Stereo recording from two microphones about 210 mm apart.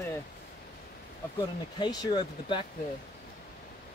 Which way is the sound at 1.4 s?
20° left (ahead or behind).